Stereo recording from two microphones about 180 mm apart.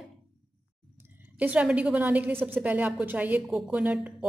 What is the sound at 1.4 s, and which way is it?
Speech, 5° right (ahead or behind).